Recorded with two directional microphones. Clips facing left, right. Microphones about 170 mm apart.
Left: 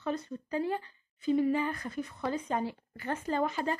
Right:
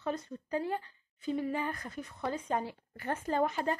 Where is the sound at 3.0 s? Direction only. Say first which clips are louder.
Even; 45° right (ahead or behind).